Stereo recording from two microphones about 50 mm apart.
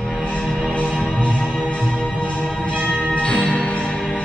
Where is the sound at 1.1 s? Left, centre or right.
Centre.